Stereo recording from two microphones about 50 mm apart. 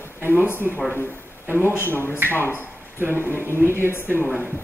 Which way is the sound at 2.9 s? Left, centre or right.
Right.